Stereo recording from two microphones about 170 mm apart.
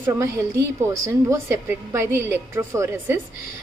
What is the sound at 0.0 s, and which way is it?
A woman's voice, 15° right (ahead or behind).